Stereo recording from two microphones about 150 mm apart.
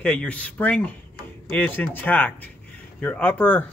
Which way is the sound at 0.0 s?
5° left (ahead or behind).